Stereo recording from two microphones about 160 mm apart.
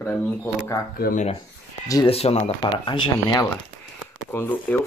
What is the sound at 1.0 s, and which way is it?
Speech, 60° left (ahead or behind).